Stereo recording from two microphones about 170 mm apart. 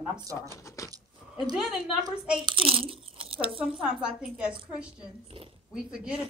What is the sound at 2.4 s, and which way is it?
Speech, 30° right (ahead or behind).